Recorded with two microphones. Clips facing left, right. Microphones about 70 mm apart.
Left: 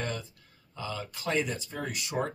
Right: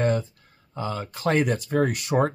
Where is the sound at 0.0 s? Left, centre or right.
Right.